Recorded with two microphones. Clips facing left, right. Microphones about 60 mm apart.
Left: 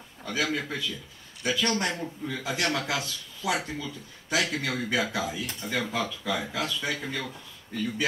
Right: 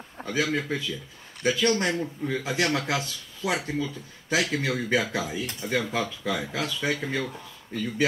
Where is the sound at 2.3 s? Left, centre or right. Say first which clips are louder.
Right 3 dB; right.